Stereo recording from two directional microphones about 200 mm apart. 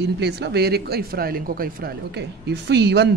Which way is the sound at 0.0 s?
60° right (ahead or behind).